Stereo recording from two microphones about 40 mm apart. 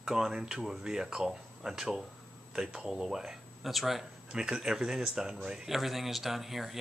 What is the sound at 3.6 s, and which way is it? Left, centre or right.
Speech, centre.